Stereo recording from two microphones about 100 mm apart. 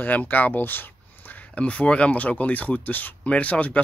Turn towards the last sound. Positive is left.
turn(degrees=15)  # may be behind; listen again after turning